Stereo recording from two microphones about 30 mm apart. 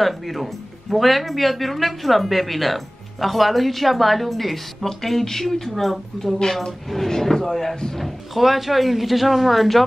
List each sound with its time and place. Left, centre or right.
0.0 s speech: centre
8.0 s speech: centre